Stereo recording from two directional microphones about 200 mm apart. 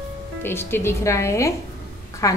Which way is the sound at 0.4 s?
10° left (ahead or behind).